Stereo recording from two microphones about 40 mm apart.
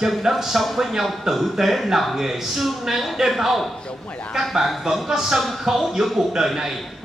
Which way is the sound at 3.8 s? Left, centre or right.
Left.